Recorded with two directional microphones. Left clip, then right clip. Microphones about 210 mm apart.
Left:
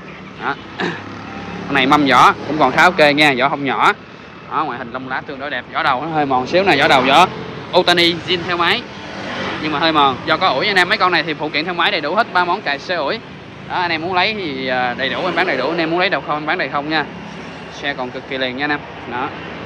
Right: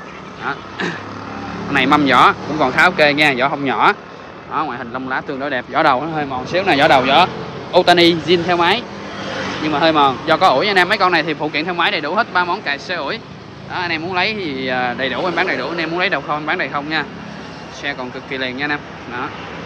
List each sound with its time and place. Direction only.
0.4 s speech: 5° right (ahead or behind)
5.4 s speech: 20° right (ahead or behind)
6.1 s speech: centre (ahead or behind)
15.4 s speech: 5° right (ahead or behind)
18.6 s speech: 5° right (ahead or behind)